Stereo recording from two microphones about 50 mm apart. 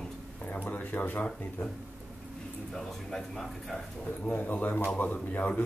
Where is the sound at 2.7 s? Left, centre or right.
Centre.